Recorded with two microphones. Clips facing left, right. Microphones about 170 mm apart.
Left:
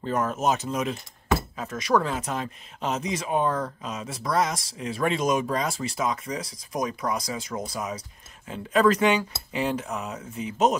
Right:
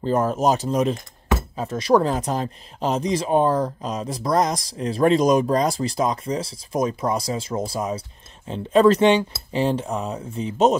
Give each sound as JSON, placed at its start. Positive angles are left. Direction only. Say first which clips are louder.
{"t": 0.0, "sound": "speech", "louder": "right 5 dB", "side_deg": -30}